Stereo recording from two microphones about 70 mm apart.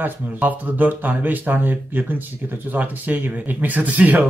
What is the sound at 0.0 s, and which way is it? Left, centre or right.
Speech, right.